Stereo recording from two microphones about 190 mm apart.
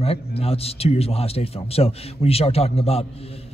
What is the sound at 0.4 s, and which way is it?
A man's voice, 30° left (ahead or behind).